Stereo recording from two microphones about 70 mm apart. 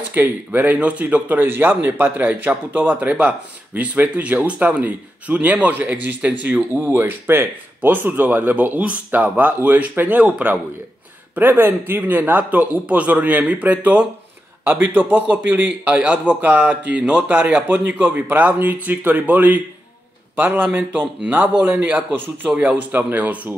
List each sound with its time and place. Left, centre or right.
0.1 s speech: right
6.9 s speech: right